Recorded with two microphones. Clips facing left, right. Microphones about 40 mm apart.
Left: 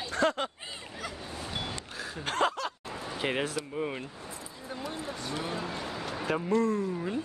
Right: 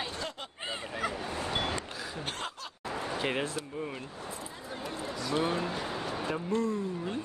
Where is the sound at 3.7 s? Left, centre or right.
Left.